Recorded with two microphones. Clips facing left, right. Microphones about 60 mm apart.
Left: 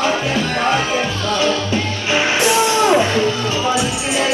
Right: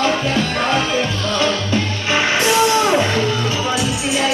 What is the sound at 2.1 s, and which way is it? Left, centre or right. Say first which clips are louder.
Music: even; right.